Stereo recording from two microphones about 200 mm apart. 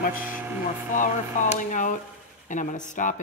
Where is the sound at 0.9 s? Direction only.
40° left (ahead or behind).